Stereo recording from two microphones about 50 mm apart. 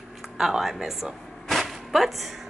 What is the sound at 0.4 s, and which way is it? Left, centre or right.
Speech, centre.